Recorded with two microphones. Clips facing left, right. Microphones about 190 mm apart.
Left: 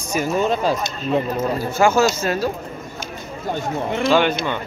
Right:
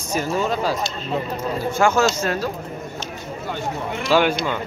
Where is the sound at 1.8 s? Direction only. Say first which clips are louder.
Left 2 dB; 5° left (ahead or behind).